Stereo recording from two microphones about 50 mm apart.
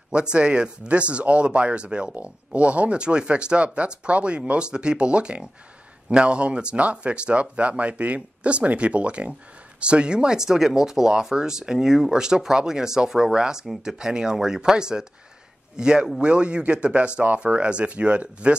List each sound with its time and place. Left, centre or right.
0.1 s speech: centre